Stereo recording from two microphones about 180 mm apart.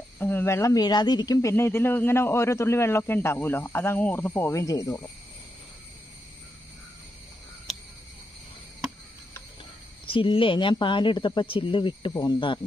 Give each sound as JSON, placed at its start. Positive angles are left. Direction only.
{"t": 0.2, "sound": "speech", "side_deg": 10}
{"t": 7.7, "sound": "a sound", "side_deg": 0}
{"t": 10.0, "sound": "speech", "side_deg": 30}